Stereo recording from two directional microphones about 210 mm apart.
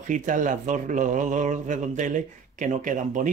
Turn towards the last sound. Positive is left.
turn(degrees=-40)  # may be behind; listen again after turning